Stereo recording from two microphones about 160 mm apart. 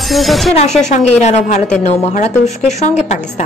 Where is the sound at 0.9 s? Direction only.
45° left (ahead or behind).